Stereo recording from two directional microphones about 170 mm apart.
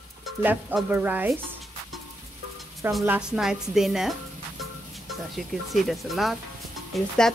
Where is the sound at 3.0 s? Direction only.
5° right (ahead or behind).